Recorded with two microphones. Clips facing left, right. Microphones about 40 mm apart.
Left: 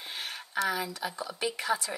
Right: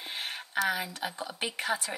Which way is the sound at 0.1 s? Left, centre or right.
Right.